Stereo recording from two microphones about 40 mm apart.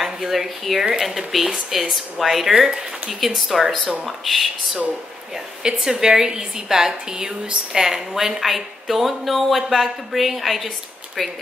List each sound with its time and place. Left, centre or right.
0.0 s speech: centre
5.6 s a woman's voice: centre